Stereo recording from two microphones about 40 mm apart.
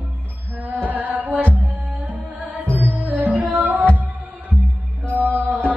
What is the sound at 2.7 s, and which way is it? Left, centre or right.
Music, right.